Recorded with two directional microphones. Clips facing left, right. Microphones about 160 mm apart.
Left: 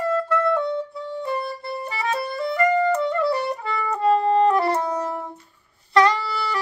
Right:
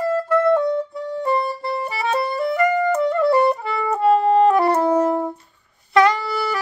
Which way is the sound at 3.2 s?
50° right (ahead or behind).